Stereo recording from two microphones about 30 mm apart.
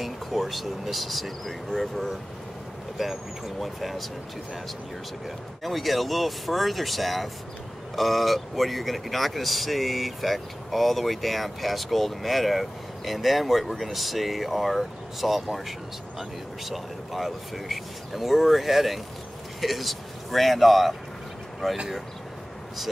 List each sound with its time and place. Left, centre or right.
0.0 s speech: centre
5.6 s speech: centre